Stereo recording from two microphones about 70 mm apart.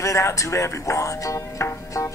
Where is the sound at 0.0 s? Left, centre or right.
Left.